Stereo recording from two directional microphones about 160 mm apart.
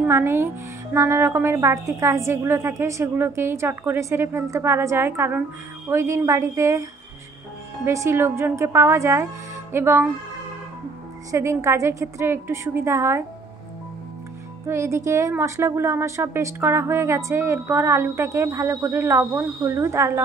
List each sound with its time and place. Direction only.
0.0 s a woman's voice: 15° right (ahead or behind)
11.3 s a woman's voice: 20° right (ahead or behind)
14.7 s a woman's voice: 20° right (ahead or behind)